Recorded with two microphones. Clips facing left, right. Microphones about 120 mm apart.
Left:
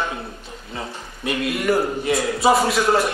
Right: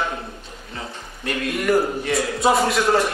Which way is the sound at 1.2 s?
5° left (ahead or behind).